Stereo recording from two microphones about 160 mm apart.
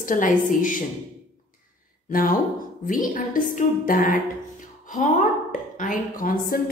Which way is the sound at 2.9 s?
60° left (ahead or behind).